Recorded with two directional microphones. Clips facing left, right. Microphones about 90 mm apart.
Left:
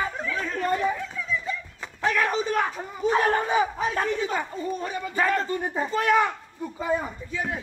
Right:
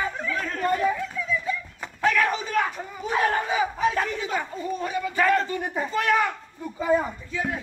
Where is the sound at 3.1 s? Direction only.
35° left (ahead or behind).